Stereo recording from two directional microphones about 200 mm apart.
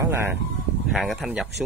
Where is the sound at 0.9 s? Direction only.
Centre (ahead or behind).